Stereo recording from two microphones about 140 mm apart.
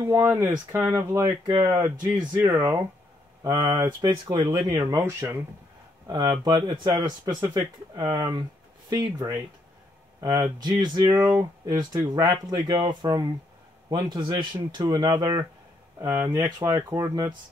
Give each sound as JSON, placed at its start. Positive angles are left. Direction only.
{"t": 0.0, "sound": "speech", "side_deg": -20}
{"t": 16.0, "sound": "speech", "side_deg": -20}